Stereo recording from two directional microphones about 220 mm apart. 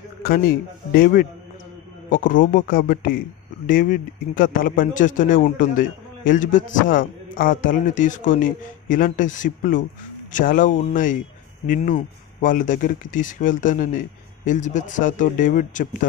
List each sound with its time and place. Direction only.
0.9 s a man's voice: 40° left (ahead or behind)